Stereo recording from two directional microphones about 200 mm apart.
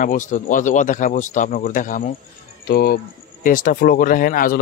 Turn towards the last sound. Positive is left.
turn(degrees=45)  # may be behind; listen again after turning